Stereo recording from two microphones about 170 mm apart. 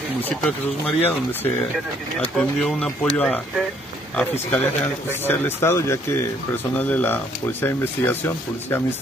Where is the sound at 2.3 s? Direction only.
5° left (ahead or behind).